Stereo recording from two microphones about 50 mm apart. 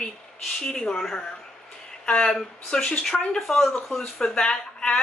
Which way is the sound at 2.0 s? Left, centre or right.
Centre.